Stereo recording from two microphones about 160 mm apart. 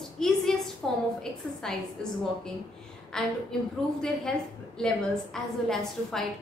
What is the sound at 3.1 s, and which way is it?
A woman's voice, 5° left (ahead or behind).